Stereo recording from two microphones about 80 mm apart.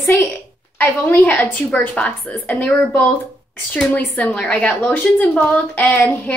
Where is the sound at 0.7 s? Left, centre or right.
Left.